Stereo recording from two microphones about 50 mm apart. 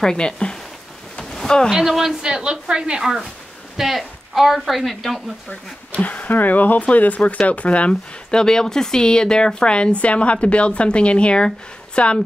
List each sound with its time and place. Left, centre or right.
0.0 s speech: centre
1.3 s a sound: centre
1.7 s a woman's voice: centre
6.0 s speech: left